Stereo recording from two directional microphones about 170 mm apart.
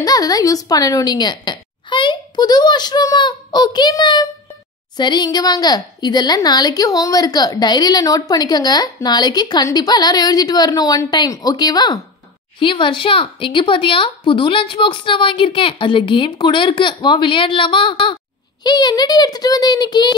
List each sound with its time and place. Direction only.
0.0 s speech: 20° left (ahead or behind)